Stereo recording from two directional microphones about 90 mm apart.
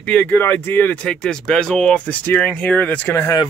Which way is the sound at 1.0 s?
10° left (ahead or behind).